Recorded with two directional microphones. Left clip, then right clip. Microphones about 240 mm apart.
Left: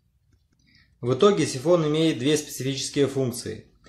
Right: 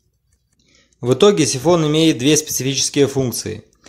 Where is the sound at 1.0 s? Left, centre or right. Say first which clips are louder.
Right 7 dB; right.